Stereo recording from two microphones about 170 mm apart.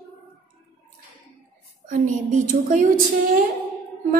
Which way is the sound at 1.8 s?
50° right (ahead or behind).